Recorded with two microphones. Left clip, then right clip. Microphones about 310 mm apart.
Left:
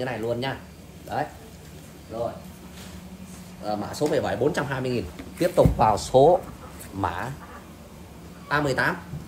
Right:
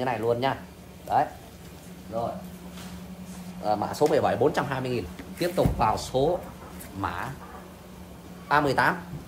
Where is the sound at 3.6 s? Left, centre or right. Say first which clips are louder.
Right 3 dB; centre.